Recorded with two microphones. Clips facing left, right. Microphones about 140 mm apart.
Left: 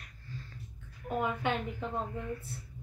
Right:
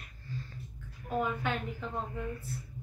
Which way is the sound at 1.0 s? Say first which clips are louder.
Left 1 dB; 20° left (ahead or behind).